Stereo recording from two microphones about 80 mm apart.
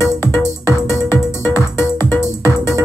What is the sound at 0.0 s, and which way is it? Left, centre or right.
Music, left.